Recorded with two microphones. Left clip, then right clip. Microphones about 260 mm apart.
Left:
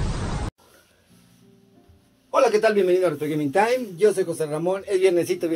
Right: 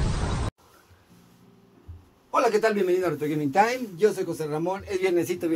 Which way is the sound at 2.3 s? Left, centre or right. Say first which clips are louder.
Left 4 dB; right.